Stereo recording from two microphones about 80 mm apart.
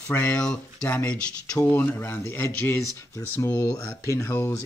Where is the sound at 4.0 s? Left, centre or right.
Left.